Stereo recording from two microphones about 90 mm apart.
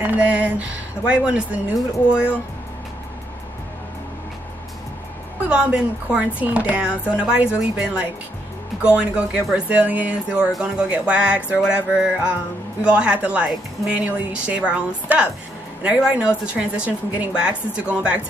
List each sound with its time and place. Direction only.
0.0 s speech: 20° right (ahead or behind)
5.5 s speech: 10° right (ahead or behind)